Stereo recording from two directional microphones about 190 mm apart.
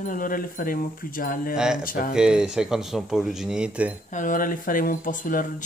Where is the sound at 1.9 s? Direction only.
50° left (ahead or behind).